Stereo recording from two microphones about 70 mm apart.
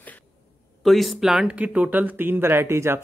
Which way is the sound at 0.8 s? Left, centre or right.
Centre.